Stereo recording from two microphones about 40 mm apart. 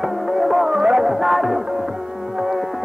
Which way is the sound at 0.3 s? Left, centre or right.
Centre.